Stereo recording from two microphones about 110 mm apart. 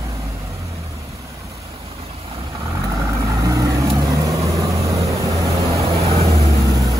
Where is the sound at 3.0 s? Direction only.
30° right (ahead or behind).